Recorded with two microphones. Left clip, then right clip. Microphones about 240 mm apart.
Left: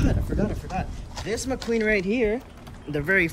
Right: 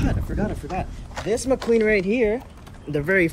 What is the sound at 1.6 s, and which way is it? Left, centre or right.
Speech, centre.